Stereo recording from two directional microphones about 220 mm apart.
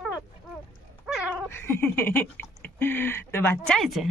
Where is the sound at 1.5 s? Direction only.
10° left (ahead or behind).